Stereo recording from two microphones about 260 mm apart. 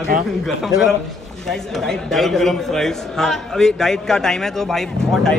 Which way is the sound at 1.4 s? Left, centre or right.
Centre.